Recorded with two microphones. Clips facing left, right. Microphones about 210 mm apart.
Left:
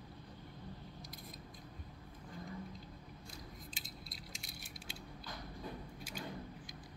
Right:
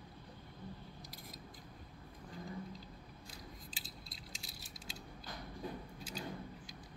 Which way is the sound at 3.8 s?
30° right (ahead or behind).